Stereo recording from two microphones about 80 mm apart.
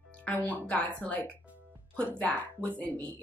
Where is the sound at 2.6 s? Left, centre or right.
Centre.